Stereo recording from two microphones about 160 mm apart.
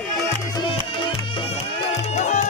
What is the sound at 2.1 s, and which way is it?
Music, 50° left (ahead or behind).